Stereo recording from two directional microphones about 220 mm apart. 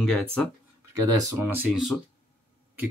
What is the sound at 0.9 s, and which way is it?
Speech, 15° right (ahead or behind).